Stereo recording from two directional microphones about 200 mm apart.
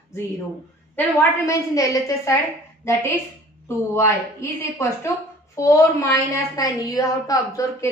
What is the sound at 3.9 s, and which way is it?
Speech, 15° left (ahead or behind).